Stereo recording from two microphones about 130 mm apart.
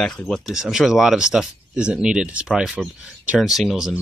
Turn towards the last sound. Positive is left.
turn(degrees=0)  # may be behind; listen again after turning